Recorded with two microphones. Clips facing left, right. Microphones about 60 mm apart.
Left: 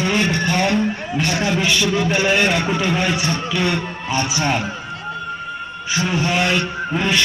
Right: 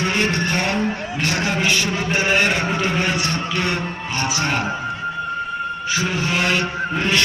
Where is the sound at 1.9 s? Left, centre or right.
Centre.